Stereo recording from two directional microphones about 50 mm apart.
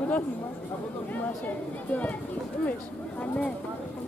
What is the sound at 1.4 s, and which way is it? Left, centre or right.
Speech, left.